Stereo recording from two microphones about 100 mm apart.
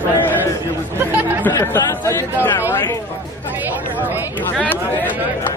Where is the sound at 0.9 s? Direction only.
20° right (ahead or behind).